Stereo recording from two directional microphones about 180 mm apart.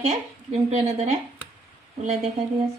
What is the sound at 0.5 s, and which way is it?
Speech, 35° right (ahead or behind).